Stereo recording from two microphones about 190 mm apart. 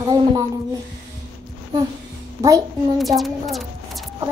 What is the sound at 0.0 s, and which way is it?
Child singing, 20° right (ahead or behind).